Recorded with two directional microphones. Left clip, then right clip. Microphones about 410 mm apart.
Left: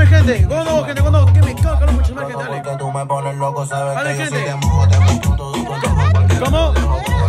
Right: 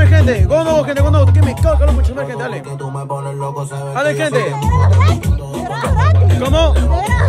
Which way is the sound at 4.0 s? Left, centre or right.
Centre.